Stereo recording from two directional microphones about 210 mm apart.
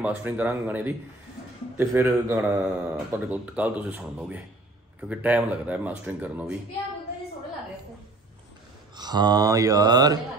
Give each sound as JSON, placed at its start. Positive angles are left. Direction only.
{"t": 0.0, "sound": "speech", "side_deg": -5}
{"t": 8.9, "sound": "speech", "side_deg": -20}